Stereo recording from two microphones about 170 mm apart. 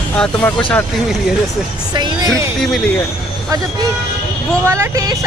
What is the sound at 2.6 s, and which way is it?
Speech, centre (ahead or behind).